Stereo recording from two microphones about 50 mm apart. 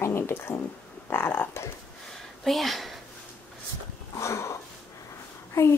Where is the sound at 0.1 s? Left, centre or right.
Left.